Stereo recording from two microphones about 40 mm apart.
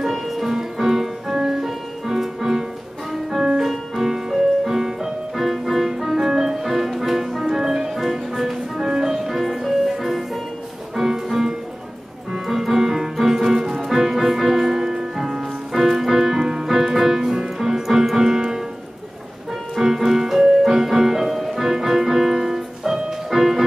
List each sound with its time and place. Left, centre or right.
0.0 s music: centre
16.3 s music: centre
16.6 s music: centre
19.7 s music: centre